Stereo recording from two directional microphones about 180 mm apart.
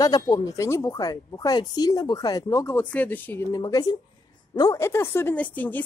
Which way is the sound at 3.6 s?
20° left (ahead or behind).